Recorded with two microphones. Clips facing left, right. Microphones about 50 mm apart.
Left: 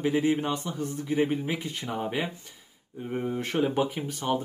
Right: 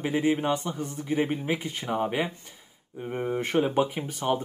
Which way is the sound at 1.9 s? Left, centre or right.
Centre.